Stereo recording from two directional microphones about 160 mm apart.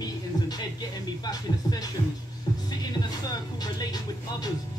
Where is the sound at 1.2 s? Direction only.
25° left (ahead or behind).